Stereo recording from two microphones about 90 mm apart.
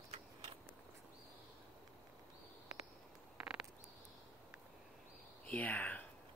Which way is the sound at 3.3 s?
5° right (ahead or behind).